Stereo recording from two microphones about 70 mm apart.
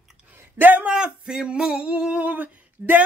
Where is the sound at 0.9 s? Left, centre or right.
Centre.